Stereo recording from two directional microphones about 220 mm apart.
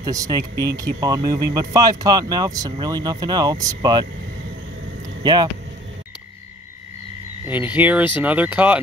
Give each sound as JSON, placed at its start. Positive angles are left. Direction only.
{"t": 0.0, "sound": "speech", "side_deg": -15}
{"t": 5.2, "sound": "speech", "side_deg": -20}
{"t": 7.4, "sound": "speech", "side_deg": -10}